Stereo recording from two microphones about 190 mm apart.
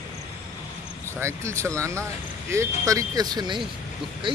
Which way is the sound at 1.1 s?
15° right (ahead or behind).